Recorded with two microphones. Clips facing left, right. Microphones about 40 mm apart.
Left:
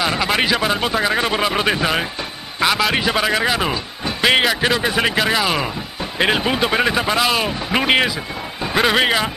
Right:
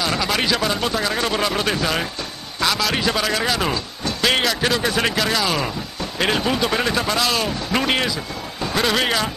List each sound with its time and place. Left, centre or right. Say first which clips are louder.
0.0 s speech: left 3 dB; left